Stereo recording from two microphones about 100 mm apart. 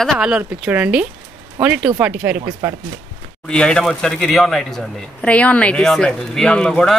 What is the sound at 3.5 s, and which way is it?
Speech, 10° left (ahead or behind).